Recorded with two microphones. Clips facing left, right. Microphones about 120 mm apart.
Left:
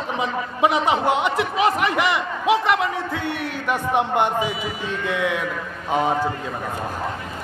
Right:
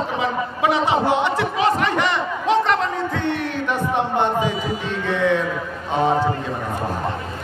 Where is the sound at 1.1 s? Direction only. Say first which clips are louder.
Right 1 dB; 15° left (ahead or behind).